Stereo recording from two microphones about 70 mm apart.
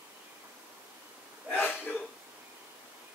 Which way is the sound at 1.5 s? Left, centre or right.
Left.